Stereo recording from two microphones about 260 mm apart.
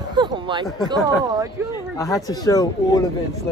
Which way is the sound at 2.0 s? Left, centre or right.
Centre.